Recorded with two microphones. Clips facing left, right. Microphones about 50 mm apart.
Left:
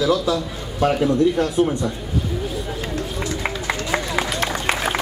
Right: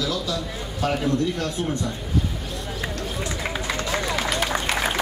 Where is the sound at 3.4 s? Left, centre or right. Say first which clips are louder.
Left 1 dB; left.